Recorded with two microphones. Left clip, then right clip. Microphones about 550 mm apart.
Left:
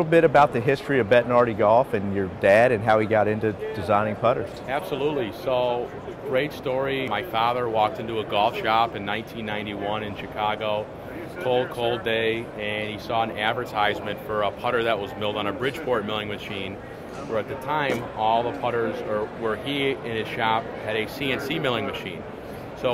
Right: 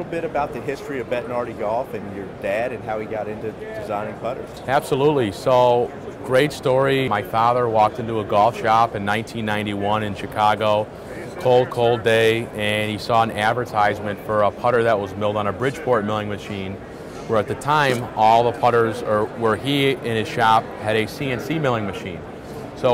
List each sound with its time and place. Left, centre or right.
0.1 s speech: left
4.6 s speech: right
17.3 s speech: right